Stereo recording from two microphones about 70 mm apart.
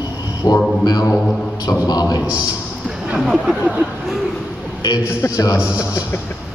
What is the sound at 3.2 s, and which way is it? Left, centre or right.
Speech, centre.